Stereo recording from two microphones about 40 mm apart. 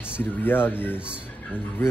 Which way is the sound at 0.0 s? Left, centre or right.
Left.